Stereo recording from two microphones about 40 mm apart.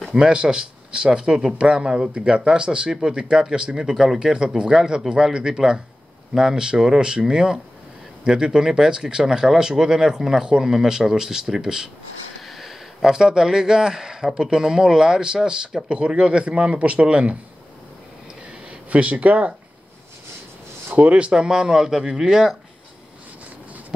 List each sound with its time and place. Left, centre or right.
0.1 s speech: right
12.4 s a sound: centre
13.1 s speech: centre
18.7 s speech: right
20.9 s speech: right
21.3 s speech: centre